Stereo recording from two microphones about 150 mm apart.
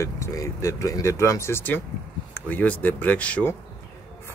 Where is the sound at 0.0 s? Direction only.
20° left (ahead or behind).